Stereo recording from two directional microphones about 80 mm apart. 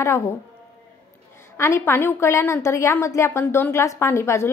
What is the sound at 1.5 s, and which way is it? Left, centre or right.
A woman's voice, left.